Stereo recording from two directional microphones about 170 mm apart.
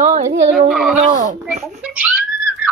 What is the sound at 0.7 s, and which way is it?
Speech, 5° right (ahead or behind).